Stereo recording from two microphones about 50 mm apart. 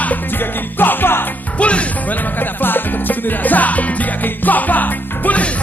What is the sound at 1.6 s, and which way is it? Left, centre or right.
Music, left.